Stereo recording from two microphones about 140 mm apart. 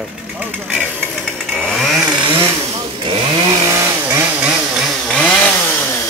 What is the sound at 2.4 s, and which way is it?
Vehicle, 35° right (ahead or behind).